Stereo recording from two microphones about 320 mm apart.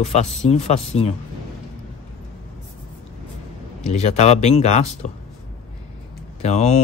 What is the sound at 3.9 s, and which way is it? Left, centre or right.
Speech, left.